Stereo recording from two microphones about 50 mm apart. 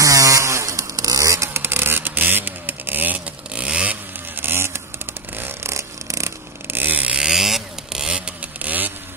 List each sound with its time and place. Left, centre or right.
0.0 s chainsaw: right
1.2 s vehicle: right
3.5 s vehicle: right
4.4 s vehicle: right
5.6 s a sound: right
6.7 s chainsaw: right
7.2 s vehicle: centre
8.1 s vehicle: right